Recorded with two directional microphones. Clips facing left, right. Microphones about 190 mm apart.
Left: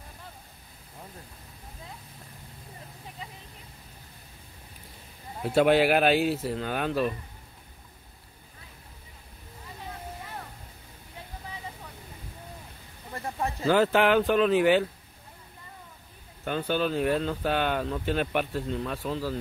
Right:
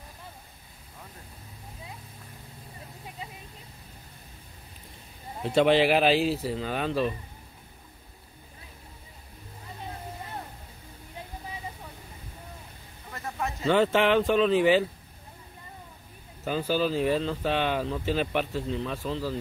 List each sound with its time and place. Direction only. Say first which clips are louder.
5.4 s speech: even; 5° left (ahead or behind)
13.1 s a sound: left 2 dB; 30° left (ahead or behind)
13.7 s speech: even; centre (ahead or behind)
16.4 s speech: right 1 dB; centre (ahead or behind)